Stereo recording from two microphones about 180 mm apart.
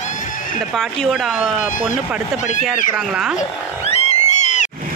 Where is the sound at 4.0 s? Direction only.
35° left (ahead or behind).